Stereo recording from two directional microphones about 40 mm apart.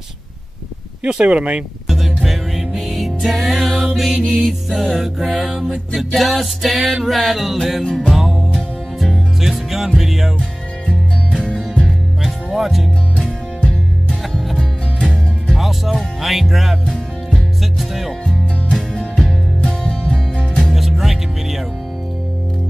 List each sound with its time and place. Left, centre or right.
1.0 s speech: right
1.9 s music: centre
7.8 s music: centre
8.1 s music: centre
9.4 s music: centre
12.5 s music: centre
13.7 s music: centre
15.5 s music: centre
16.8 s music: centre
17.7 s music: centre
18.2 s music: centre
19.6 s music: centre
20.7 s music: centre